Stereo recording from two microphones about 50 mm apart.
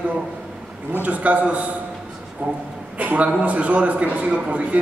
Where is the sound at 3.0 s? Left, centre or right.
Right.